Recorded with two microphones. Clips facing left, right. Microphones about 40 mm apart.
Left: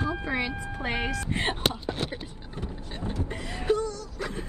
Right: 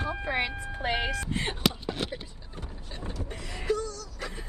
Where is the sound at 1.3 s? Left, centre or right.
Left.